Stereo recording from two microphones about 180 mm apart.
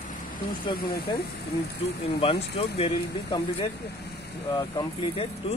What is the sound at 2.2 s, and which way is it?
Speech, 30° left (ahead or behind).